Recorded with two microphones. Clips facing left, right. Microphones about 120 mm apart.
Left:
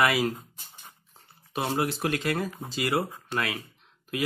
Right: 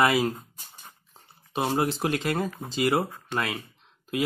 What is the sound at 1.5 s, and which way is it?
Speech, 25° right (ahead or behind).